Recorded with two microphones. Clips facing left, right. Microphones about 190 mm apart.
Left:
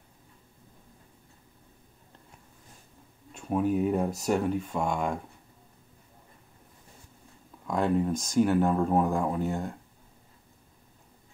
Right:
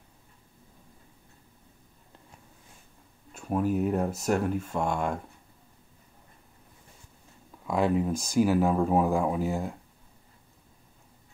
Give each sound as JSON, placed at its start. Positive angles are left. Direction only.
{"t": 3.3, "sound": "speech", "side_deg": -5}
{"t": 7.6, "sound": "speech", "side_deg": -5}